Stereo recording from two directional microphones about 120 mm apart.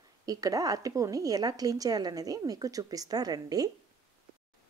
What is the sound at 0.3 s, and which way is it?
A woman's voice, 30° right (ahead or behind).